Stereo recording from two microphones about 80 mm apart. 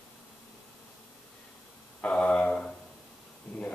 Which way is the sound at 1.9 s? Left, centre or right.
Centre.